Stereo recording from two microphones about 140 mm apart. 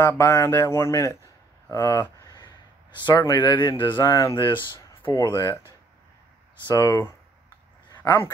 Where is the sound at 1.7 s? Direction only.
20° left (ahead or behind).